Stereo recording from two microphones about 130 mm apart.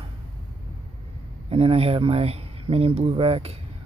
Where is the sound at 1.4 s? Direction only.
50° right (ahead or behind).